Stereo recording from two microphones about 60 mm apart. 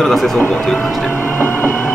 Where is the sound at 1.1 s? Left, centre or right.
Left.